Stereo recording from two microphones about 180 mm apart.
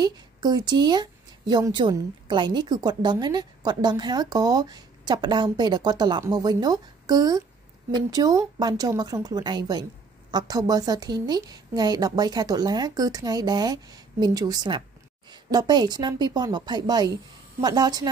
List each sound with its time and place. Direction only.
0.0 s a woman's voice: 20° right (ahead or behind)